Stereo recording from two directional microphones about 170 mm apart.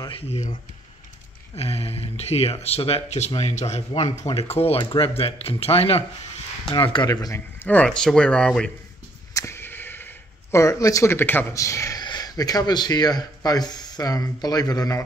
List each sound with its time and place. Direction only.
0.3 s speech: 40° left (ahead or behind)
1.6 s speech: 35° left (ahead or behind); by 8.7 s 5° left (ahead or behind)
9.3 s speech: 15° left (ahead or behind)